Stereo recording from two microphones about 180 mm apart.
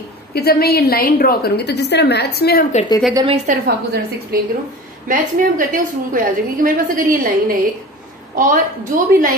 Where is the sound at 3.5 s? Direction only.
45° right (ahead or behind).